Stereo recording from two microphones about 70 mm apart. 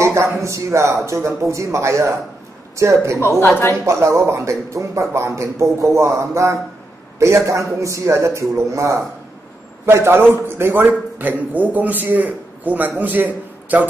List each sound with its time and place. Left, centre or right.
0.0 s speech: right
3.2 s a woman's voice: left
3.8 s a man's voice: right